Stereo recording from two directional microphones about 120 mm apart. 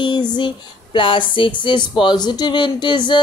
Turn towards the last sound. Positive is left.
turn(degrees=40)  # may be behind; listen again after turning